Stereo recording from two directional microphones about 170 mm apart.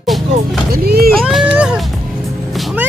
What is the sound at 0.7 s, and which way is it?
Speech, 65° right (ahead or behind).